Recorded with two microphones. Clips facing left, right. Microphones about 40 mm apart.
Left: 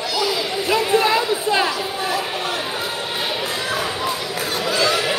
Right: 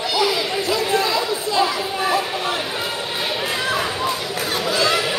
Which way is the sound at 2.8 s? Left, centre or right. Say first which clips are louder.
Even; centre.